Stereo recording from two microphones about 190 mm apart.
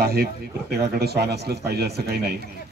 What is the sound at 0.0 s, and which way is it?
A man's voice, 55° right (ahead or behind).